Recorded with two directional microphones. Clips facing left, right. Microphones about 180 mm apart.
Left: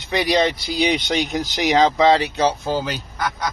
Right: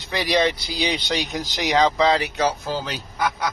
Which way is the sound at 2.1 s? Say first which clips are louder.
Left 4 dB; 30° left (ahead or behind).